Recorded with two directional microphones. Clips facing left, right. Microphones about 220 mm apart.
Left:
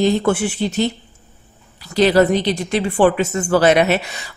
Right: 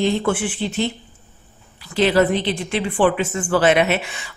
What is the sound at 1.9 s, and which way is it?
Speech, 40° left (ahead or behind).